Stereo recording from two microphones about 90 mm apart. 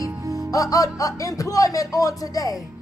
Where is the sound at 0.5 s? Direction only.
40° left (ahead or behind).